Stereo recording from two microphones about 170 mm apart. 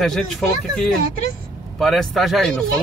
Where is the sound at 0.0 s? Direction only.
Centre (ahead or behind).